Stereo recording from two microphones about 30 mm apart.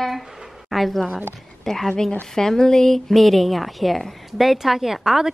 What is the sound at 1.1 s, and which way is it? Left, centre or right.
Speech, centre.